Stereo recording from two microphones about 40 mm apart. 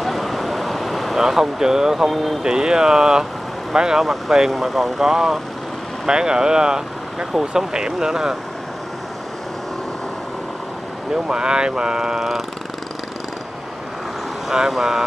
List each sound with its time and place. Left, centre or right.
0.0 s vehicle: centre
1.2 s speech: centre
11.2 s speech: right
14.8 s speech: centre